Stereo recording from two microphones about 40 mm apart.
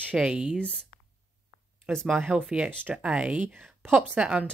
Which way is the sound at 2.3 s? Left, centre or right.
Right.